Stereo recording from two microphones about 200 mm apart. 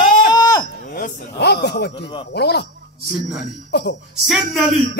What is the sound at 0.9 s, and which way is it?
Speech, 40° left (ahead or behind).